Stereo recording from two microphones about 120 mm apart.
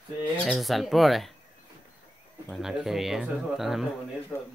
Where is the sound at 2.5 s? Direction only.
Centre (ahead or behind).